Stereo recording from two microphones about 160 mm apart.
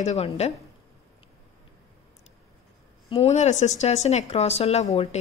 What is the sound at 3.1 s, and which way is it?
A woman's voice, 40° left (ahead or behind).